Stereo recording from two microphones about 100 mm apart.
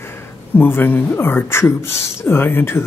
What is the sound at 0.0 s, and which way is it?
Speech, 25° left (ahead or behind).